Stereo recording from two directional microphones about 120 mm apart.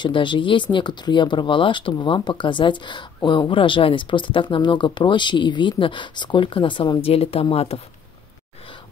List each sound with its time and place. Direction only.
0.0 s speech: 40° left (ahead or behind)